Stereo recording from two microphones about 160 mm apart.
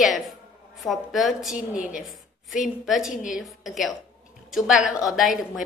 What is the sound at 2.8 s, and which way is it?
A woman's voice, 5° right (ahead or behind).